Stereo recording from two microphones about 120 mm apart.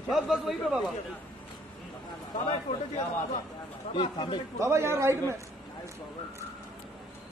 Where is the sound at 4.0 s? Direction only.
45° left (ahead or behind).